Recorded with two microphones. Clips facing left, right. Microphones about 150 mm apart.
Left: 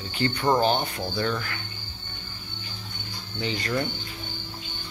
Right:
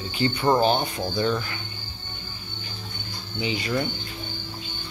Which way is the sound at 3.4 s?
10° right (ahead or behind).